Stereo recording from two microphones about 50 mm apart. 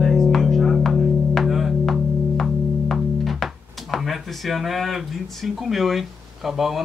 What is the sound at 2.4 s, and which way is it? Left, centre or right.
Speech, centre.